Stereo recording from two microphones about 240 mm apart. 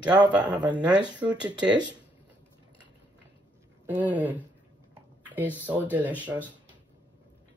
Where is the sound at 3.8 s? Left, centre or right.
Centre.